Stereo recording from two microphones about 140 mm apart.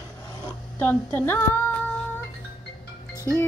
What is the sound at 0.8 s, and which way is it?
Speech, 15° left (ahead or behind).